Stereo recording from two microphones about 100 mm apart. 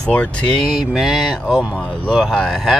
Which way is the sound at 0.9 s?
5° right (ahead or behind).